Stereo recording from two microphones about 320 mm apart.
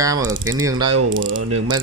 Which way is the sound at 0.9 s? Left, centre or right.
Right.